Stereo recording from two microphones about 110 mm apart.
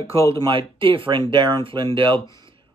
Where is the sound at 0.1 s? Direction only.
60° right (ahead or behind).